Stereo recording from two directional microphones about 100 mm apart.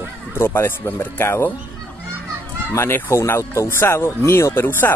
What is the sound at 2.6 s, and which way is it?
Speech, 20° left (ahead or behind).